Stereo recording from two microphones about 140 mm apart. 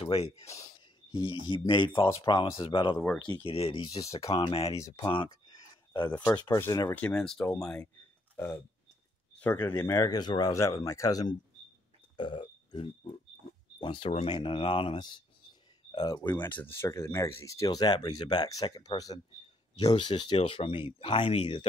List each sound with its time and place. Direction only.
0.0 s speech: 45° left (ahead or behind)
1.2 s speech: 30° left (ahead or behind)
4.3 s speech: 40° left (ahead or behind)
4.6 s speech: 20° left (ahead or behind)
6.3 s speech: 25° left (ahead or behind)
7.0 s speech: 5° left (ahead or behind)
9.3 s speech: 15° left (ahead or behind)
12.2 s a sound: 35° left (ahead or behind)
13.7 s speech: 35° left (ahead or behind)
16.3 s speech: 15° left (ahead or behind); by 21.6 s 40° left (ahead or behind)